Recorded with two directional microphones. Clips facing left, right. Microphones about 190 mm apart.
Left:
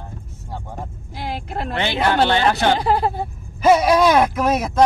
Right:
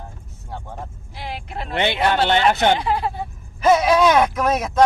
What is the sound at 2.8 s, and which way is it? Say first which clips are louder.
Speech: left 4 dB; 40° left (ahead or behind).